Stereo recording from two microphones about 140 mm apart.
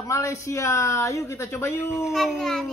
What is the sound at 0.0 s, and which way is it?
Speech, 20° left (ahead or behind).